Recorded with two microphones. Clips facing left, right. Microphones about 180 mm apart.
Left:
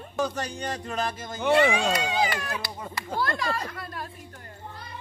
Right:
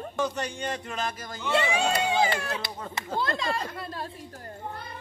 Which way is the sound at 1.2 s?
20° left (ahead or behind).